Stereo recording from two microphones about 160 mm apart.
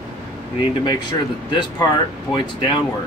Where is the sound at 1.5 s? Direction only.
30° left (ahead or behind).